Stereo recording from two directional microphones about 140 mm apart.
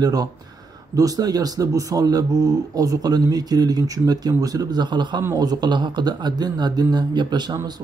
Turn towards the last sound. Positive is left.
turn(degrees=-30)  # may be behind; listen again after turning